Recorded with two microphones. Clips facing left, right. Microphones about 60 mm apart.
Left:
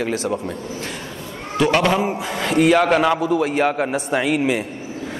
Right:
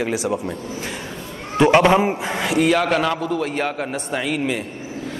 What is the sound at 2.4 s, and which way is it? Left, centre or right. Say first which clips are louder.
A man's voice: left 3 dB; centre.